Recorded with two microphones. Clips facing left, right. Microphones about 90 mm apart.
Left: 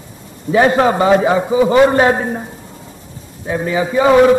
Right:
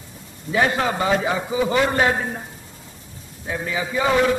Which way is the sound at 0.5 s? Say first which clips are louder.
Left 8 dB; 35° left (ahead or behind).